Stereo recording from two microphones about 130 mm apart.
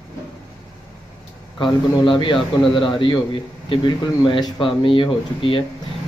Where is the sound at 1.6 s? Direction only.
35° left (ahead or behind).